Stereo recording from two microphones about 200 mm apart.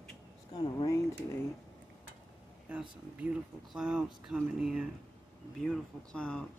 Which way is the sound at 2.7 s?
5° right (ahead or behind).